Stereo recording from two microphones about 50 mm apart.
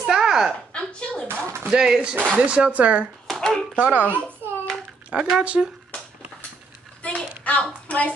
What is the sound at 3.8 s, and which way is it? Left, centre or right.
Speech, right.